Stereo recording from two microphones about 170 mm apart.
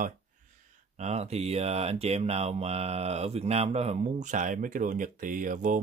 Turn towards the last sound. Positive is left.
turn(degrees=-50)  # may be behind; listen again after turning